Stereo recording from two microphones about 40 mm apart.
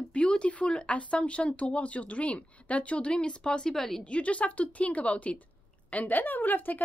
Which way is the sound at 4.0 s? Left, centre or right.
Left.